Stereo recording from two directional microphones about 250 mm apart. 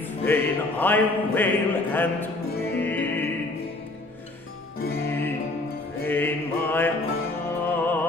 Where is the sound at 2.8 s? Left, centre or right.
Centre.